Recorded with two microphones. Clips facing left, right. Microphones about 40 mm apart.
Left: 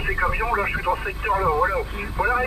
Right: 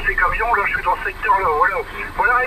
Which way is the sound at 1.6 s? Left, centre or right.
Right.